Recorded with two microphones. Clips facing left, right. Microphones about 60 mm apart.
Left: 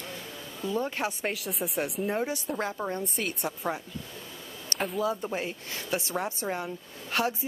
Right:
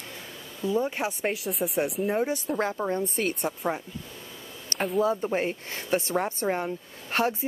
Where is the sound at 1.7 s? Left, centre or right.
Centre.